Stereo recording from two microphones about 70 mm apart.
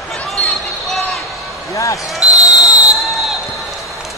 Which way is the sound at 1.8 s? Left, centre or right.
Left.